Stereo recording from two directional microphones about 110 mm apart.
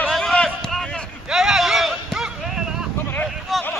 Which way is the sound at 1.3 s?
5° right (ahead or behind).